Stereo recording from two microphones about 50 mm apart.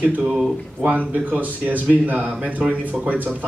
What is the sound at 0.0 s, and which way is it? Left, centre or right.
Speech, right.